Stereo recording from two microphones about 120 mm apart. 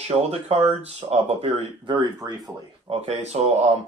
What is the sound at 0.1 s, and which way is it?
Speech, 60° right (ahead or behind).